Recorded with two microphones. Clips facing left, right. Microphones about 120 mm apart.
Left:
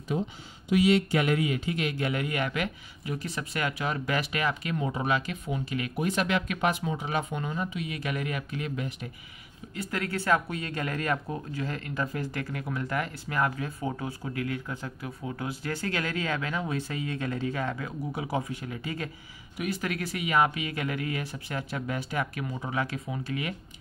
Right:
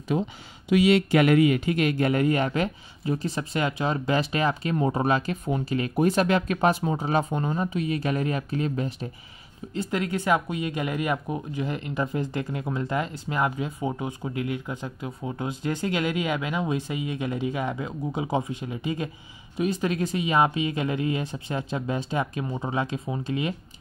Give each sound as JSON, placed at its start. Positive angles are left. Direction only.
{"t": 0.1, "sound": "speech", "side_deg": -90}
{"t": 9.8, "sound": "speech", "side_deg": -20}